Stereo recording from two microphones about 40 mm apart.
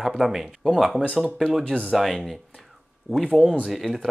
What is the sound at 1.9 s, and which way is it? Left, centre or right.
Speech, centre.